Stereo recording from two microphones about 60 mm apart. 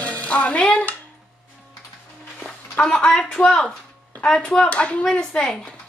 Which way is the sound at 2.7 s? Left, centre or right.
Centre.